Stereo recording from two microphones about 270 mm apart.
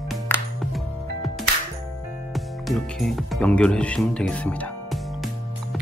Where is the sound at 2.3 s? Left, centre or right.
Centre.